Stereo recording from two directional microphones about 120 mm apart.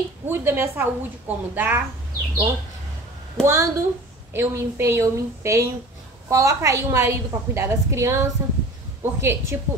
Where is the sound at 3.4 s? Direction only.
5° left (ahead or behind).